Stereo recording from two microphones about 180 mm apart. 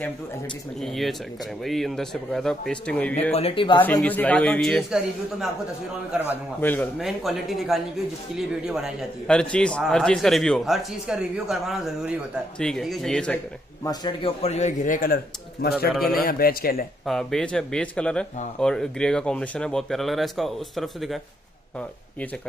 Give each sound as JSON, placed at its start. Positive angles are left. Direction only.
{"t": 0.7, "sound": "a man's voice", "side_deg": 0}
{"t": 3.3, "sound": "speech", "side_deg": 30}
{"t": 3.8, "sound": "a man's voice", "side_deg": 10}
{"t": 6.6, "sound": "a man's voice", "side_deg": 10}
{"t": 7.0, "sound": "a man's voice", "side_deg": 0}
{"t": 13.8, "sound": "a man's voice", "side_deg": 25}
{"t": 17.0, "sound": "a man's voice", "side_deg": 0}